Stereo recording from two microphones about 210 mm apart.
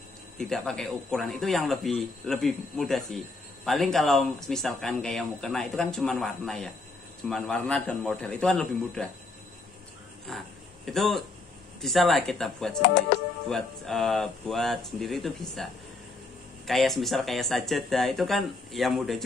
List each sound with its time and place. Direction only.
0.4 s speech: centre (ahead or behind)
10.3 s speech: 5° left (ahead or behind)
13.1 s speech: 55° left (ahead or behind)
13.5 s speech: centre (ahead or behind)